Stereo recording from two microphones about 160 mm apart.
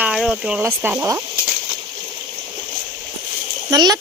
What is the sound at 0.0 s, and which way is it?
Speech, 5° right (ahead or behind).